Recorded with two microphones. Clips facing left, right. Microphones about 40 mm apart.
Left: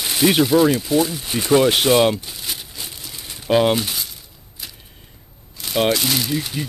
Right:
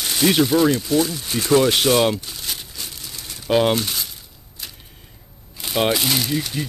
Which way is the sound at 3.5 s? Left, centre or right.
Centre.